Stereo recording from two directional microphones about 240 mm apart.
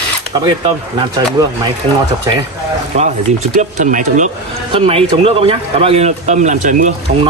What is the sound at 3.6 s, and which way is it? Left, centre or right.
Speech, right.